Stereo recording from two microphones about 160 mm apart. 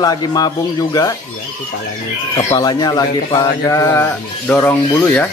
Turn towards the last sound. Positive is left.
turn(degrees=10)  # may be behind; listen again after turning